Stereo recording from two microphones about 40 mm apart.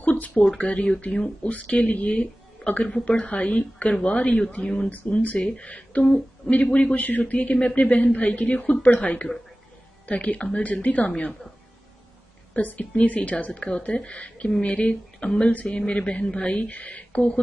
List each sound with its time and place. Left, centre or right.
0.0 s a sound: left
0.6 s a woman's voice: left
2.0 s a woman's voice: left
4.8 s a woman's voice: left
5.4 s speech: left
6.0 s a sound: centre
6.5 s a woman's voice: left
7.0 s a woman's voice: left
12.5 s a woman's voice: left